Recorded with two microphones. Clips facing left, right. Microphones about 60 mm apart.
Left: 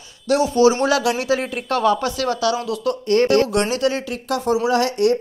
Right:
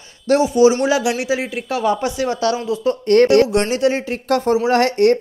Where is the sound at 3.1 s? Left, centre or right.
Right.